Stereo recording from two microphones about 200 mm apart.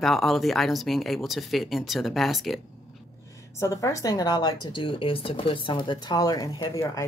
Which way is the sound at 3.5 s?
15° left (ahead or behind).